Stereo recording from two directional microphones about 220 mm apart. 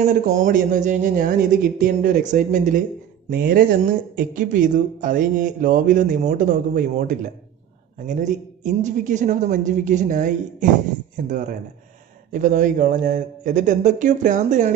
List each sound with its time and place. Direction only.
0.0 s a woman's voice: 35° right (ahead or behind)